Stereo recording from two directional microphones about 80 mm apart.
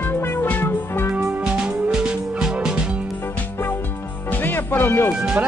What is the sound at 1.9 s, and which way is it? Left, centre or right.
Music, centre.